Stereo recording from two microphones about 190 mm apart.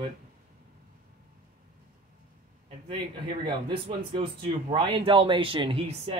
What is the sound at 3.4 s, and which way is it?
Speech, 30° right (ahead or behind).